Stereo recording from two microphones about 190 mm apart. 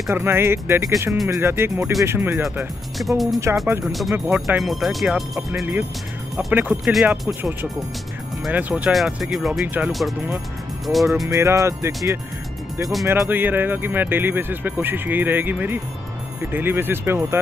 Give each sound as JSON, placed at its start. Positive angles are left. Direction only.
{"t": 0.1, "sound": "speech", "side_deg": -15}
{"t": 3.0, "sound": "speech", "side_deg": 0}
{"t": 11.2, "sound": "speech", "side_deg": -15}
{"t": 13.2, "sound": "speech", "side_deg": -10}